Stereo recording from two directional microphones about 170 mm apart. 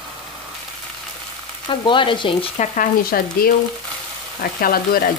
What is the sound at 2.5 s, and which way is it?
Frying, 45° left (ahead or behind).